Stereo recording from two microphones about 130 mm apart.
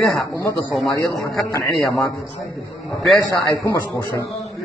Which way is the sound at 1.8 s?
25° left (ahead or behind).